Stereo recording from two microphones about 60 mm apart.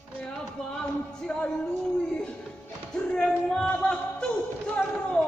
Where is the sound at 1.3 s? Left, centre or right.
Centre.